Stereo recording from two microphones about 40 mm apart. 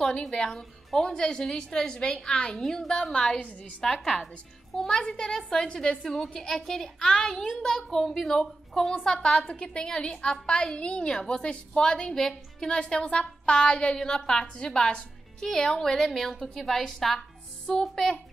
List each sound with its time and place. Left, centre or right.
0.2 s a woman's voice: centre
3.3 s a woman's voice: left
3.8 s a woman's voice: centre
4.2 s a woman's voice: centre